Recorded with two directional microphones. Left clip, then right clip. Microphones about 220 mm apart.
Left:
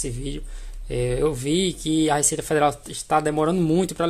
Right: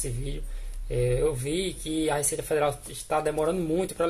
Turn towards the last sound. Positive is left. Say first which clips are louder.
# left 5 dB
turn(degrees=45)  # may be behind; listen again after turning